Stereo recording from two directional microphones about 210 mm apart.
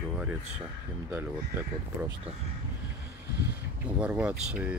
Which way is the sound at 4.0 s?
5° right (ahead or behind).